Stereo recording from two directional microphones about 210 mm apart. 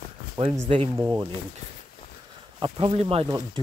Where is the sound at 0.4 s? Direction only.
20° right (ahead or behind).